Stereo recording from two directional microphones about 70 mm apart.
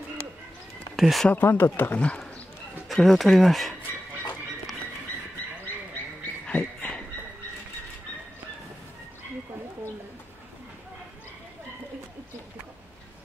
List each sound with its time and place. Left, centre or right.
0.9 s speech: centre
1.3 s speech: left
2.0 s speech: centre
2.9 s speech: centre